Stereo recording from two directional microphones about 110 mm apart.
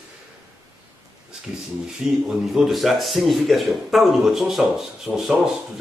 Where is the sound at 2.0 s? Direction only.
5° right (ahead or behind).